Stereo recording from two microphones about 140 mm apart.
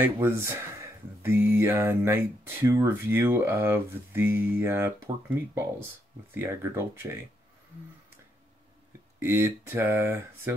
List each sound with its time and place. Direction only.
0.0 s speech: 15° right (ahead or behind)
9.2 s speech: 15° right (ahead or behind)